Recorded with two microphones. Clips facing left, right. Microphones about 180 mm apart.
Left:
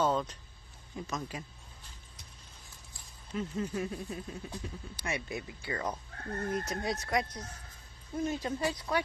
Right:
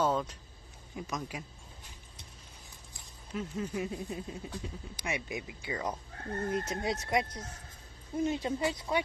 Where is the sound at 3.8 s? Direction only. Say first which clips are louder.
Right 1 dB; 15° right (ahead or behind).